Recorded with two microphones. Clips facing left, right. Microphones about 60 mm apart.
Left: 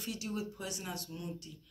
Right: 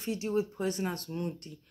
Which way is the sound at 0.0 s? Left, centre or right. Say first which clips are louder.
Right 8 dB; right.